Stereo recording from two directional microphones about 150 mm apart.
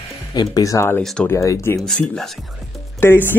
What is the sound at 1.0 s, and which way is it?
Speech, 5° left (ahead or behind).